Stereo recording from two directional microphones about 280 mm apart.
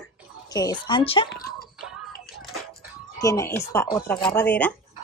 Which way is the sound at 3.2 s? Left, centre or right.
Centre.